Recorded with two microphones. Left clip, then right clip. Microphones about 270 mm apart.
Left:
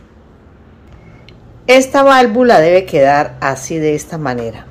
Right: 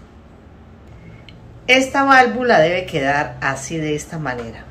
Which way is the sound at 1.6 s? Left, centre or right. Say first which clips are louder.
Left 7 dB; left.